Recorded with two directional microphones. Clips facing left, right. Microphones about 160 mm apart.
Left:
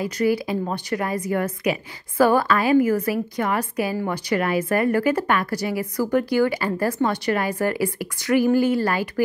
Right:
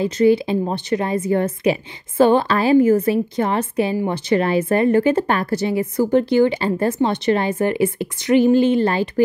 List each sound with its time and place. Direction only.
0.0 s a woman's voice: 25° right (ahead or behind)